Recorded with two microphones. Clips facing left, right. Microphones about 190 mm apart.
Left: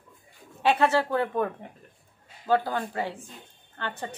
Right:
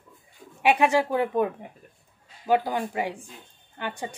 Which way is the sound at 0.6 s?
15° right (ahead or behind).